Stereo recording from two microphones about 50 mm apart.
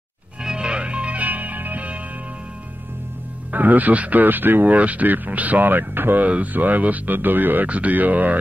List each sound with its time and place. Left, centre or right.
0.4 s music: centre; by 2.0 s right
3.5 s speech: right
4.7 s speech: right
6.2 s speech: right